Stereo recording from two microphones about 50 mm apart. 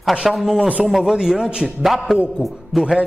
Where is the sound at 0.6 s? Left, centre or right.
Right.